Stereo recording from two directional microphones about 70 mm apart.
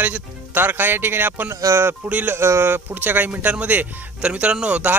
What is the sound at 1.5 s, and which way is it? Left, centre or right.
Speech, right.